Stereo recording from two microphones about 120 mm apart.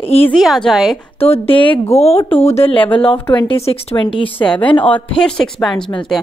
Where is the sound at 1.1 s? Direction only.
55° left (ahead or behind).